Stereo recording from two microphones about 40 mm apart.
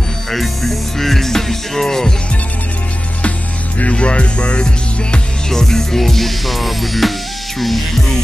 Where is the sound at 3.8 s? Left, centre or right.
Left.